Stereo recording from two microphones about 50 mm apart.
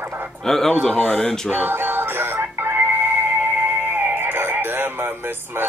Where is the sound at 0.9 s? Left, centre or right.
Left.